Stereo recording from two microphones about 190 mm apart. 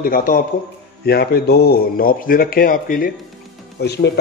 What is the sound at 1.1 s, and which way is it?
A man's voice, 55° left (ahead or behind).